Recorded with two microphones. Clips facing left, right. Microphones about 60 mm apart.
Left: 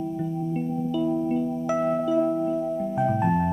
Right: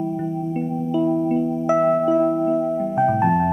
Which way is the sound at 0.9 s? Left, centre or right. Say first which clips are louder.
Right 6 dB; right.